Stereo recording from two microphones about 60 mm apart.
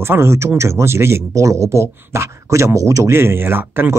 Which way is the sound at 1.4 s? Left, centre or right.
Right.